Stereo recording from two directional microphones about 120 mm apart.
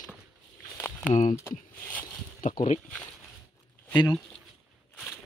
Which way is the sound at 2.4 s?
80° left.